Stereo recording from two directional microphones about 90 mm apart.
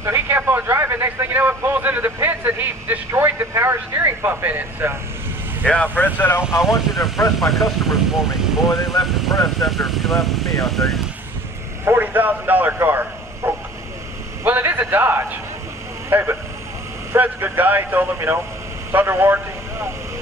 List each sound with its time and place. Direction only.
0.0 s a man's voice: 25° right (ahead or behind)
5.7 s speech: 15° left (ahead or behind)
6.4 s speech: 5° right (ahead or behind)
7.0 s speech: 40° left (ahead or behind)
7.3 s speech: centre (ahead or behind)
11.8 s speech: 25° right (ahead or behind)
13.4 s bow-wow: 25° right (ahead or behind)
14.4 s a man's voice: 20° right (ahead or behind)